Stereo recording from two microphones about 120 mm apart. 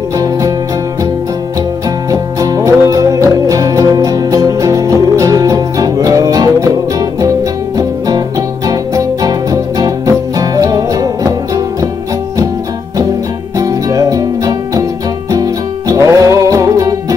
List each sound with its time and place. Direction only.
2.0 s music: 30° right (ahead or behind)
13.6 s music: 30° right (ahead or behind)